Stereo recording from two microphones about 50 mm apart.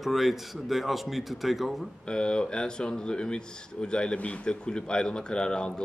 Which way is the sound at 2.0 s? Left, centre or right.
Centre.